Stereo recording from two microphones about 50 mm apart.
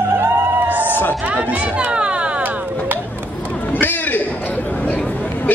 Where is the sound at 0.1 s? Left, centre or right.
Right.